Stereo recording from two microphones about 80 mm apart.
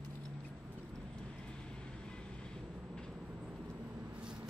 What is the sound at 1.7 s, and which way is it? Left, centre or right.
Vehicle, centre.